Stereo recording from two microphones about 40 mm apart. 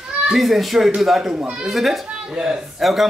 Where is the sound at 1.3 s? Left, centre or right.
Right.